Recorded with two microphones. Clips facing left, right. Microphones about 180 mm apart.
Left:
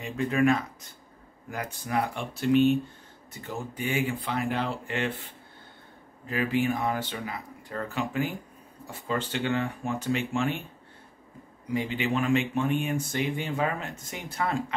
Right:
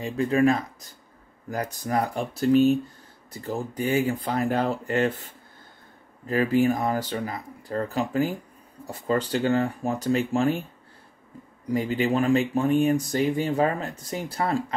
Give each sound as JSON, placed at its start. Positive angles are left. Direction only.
{"t": 0.0, "sound": "speech", "side_deg": -35}
{"t": 11.7, "sound": "speech", "side_deg": -40}